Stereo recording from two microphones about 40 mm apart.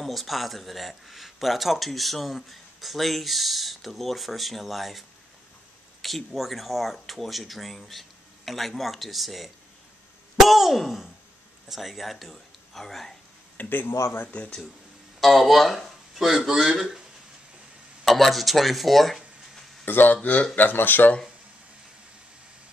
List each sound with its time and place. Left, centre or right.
0.0 s speech: centre
6.0 s speech: centre
13.7 s speech: left
15.1 s speech: centre
18.0 s speech: centre
19.8 s speech: left
20.2 s speech: left
20.5 s speech: left